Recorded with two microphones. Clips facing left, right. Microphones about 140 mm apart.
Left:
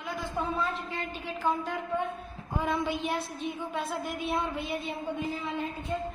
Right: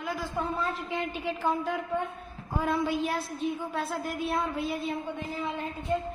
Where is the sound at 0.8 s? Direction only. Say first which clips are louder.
Right 4 dB; 10° right (ahead or behind).